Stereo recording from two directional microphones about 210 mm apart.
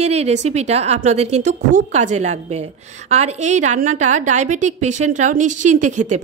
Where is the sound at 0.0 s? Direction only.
30° right (ahead or behind).